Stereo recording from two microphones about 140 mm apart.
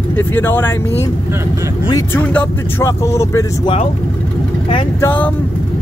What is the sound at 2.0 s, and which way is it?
Speech, 10° left (ahead or behind).